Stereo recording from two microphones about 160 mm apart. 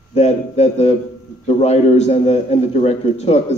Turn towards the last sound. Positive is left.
turn(degrees=40)  # may be behind; listen again after turning